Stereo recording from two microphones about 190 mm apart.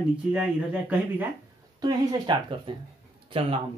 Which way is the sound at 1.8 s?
25° right (ahead or behind).